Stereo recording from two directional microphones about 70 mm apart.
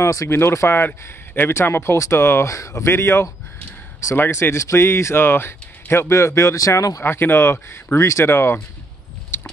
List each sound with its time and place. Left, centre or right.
0.0 s speech: left
0.3 s speech: left
2.5 s speech: left
7.0 s speech: left
9.3 s a sound: left